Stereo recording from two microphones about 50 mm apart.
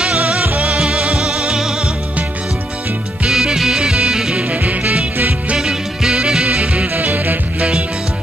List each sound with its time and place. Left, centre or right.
0.0 s music: right
3.3 s music: centre
4.4 s music: right
5.6 s music: centre; by 7.3 s right